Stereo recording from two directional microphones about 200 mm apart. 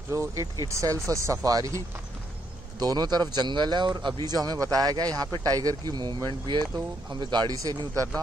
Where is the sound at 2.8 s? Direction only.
20° right (ahead or behind).